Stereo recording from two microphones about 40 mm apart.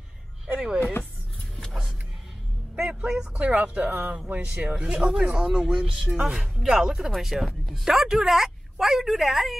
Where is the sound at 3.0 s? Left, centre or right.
Right.